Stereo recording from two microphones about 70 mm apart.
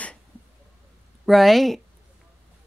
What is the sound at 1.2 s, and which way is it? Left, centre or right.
Speech, centre.